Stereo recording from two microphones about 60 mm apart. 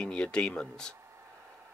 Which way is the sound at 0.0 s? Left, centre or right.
Centre.